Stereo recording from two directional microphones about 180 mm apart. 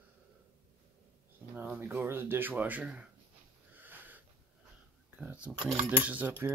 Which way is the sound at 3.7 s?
10° right (ahead or behind).